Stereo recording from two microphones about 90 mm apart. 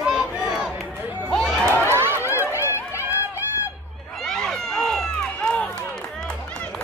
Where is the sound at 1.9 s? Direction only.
25° right (ahead or behind).